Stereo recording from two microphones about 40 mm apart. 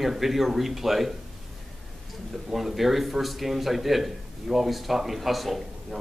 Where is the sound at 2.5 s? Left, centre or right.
Centre.